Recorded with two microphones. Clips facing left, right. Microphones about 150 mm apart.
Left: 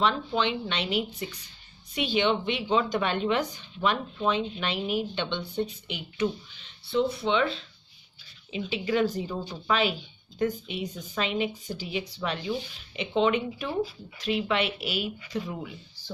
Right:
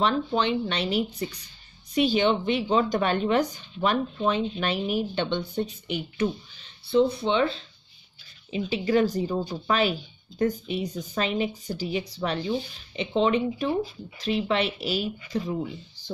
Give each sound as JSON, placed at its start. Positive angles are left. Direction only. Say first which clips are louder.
{"t": 0.0, "sound": "a woman's voice", "louder": "right 2 dB", "side_deg": -40}